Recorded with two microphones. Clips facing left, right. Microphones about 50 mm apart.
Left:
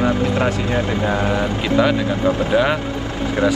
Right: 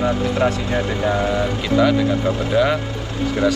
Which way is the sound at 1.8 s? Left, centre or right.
Centre.